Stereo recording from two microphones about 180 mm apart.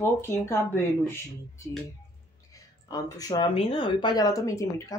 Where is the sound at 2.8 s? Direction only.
20° left (ahead or behind).